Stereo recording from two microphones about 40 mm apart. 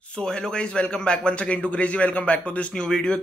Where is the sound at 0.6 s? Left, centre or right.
Left.